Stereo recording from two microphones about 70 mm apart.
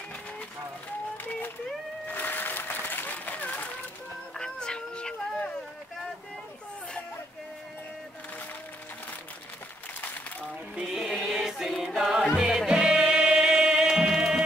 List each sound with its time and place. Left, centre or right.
2.0 s applause: left
4.4 s a sound: centre
10.8 s music: centre